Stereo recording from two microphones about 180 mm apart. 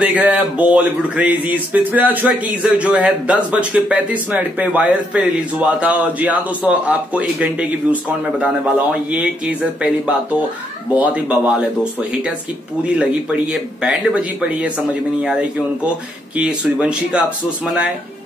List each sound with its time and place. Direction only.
0.0 s speech: 10° right (ahead or behind)
11.0 s speech: 10° right (ahead or behind)
16.3 s speech: 5° right (ahead or behind)